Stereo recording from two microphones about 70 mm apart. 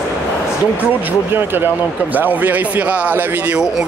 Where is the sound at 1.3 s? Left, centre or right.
Right.